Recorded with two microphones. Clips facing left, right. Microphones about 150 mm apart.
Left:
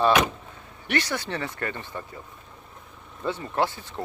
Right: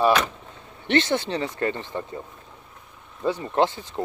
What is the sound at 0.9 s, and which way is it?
Speech, 20° right (ahead or behind).